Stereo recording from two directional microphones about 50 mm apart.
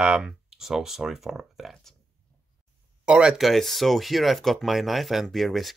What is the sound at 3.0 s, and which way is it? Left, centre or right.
Speech, right.